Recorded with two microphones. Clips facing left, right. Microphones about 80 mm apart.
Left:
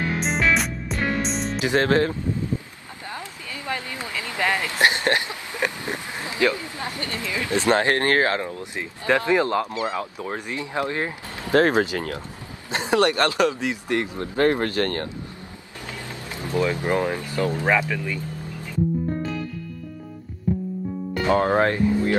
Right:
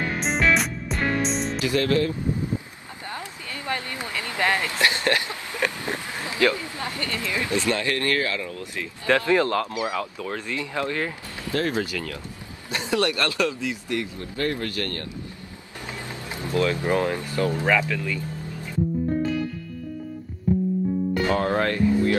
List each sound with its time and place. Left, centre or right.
0.2 s music: centre
1.6 s speech: left
1.9 s speech: left
3.5 s a sound: centre
4.0 s speech: centre
4.6 s speech: left
11.5 s speech: left
11.8 s speech: left
15.9 s music: right
16.5 s speech: centre
21.3 s speech: left